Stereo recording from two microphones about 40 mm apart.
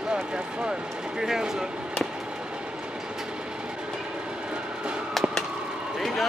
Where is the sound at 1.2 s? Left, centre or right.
Centre.